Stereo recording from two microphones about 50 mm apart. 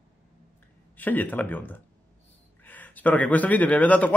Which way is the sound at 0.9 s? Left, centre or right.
Left.